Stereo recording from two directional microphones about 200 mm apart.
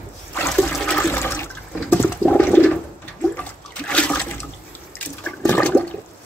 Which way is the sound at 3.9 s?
5° left (ahead or behind).